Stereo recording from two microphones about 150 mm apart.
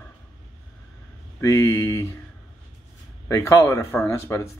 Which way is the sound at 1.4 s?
20° left (ahead or behind).